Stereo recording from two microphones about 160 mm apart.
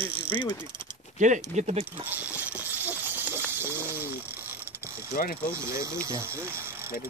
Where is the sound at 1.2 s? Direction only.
50° right (ahead or behind).